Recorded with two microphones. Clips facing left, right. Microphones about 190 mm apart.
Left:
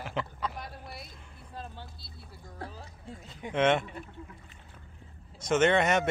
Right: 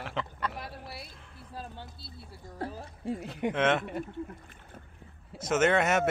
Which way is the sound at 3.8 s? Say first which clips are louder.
Right 8 dB; 60° right (ahead or behind).